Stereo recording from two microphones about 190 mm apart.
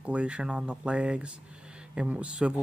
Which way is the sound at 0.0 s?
5° right (ahead or behind).